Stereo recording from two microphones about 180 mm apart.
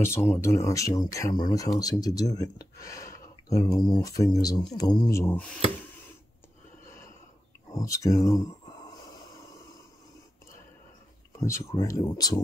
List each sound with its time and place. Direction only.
0.0 s speech: 15° left (ahead or behind)
7.7 s a sound: 20° left (ahead or behind)
11.3 s speech: 15° left (ahead or behind)